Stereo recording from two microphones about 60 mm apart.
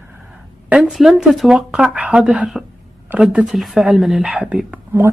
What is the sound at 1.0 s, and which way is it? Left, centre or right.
Speech, centre.